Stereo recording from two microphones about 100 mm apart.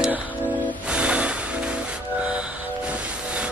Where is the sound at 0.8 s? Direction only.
10° right (ahead or behind).